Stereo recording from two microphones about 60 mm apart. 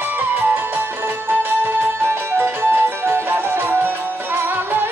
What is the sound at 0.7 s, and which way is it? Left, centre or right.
Music, right.